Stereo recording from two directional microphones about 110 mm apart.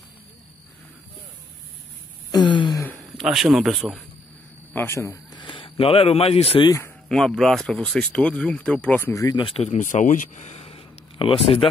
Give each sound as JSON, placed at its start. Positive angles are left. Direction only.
{"t": 2.4, "sound": "a sound", "side_deg": 45}
{"t": 3.3, "sound": "speech", "side_deg": 0}
{"t": 4.7, "sound": "a man's voice", "side_deg": 25}
{"t": 5.3, "sound": "speech", "side_deg": 45}
{"t": 7.1, "sound": "speech", "side_deg": 5}
{"t": 9.1, "sound": "speech", "side_deg": 30}
{"t": 9.6, "sound": "speech", "side_deg": 90}